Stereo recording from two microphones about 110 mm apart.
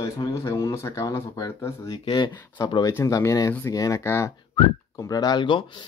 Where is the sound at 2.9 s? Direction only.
25° left (ahead or behind).